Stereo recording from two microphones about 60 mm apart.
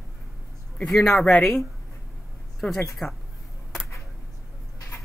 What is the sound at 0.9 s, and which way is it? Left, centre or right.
Speech, centre.